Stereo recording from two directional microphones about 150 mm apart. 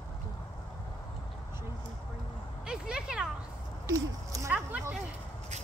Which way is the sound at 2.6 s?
5° right (ahead or behind).